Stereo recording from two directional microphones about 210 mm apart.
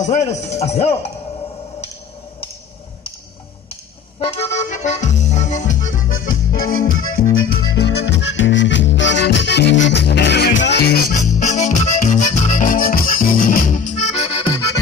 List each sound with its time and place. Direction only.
0.0 s speech: 35° left (ahead or behind)
4.2 s accordion: 30° left (ahead or behind)
6.5 s speech: 40° left (ahead or behind)
7.3 s music: 55° left (ahead or behind); by 14.6 s 25° left (ahead or behind)